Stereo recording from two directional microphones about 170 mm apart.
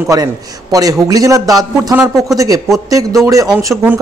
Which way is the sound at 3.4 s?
5° right (ahead or behind).